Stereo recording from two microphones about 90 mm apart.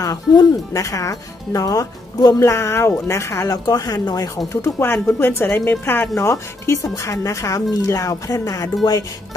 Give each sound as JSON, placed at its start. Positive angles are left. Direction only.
{"t": 0.0, "sound": "speech", "side_deg": 40}
{"t": 3.6, "sound": "speech", "side_deg": 45}
{"t": 4.6, "sound": "speech", "side_deg": 30}